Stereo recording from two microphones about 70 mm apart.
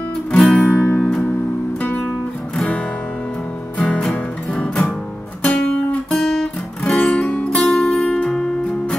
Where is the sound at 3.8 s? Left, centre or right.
Centre.